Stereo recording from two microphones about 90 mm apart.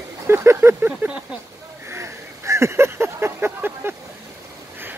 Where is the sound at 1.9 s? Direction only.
30° right (ahead or behind).